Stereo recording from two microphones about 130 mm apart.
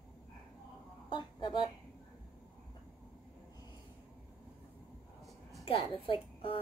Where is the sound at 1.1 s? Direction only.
40° left (ahead or behind).